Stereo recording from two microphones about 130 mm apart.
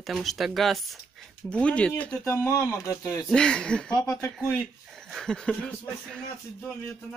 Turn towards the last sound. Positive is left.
turn(degrees=5)  # may be behind; listen again after turning